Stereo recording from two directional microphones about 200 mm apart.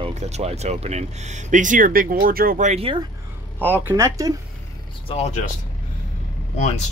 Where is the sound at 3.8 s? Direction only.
15° right (ahead or behind).